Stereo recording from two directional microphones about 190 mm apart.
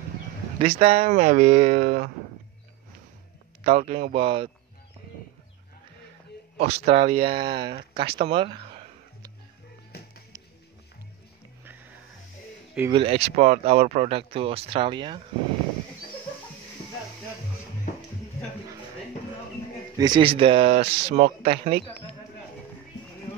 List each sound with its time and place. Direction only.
0.6 s speech: 30° right (ahead or behind)
1.0 s speech: 45° right (ahead or behind)
3.6 s speech: 35° right (ahead or behind)
6.6 s speech: 35° right (ahead or behind)
7.9 s a sound: 30° right (ahead or behind)
12.9 s speech: 30° right (ahead or behind)
20.0 s speech: 25° right (ahead or behind)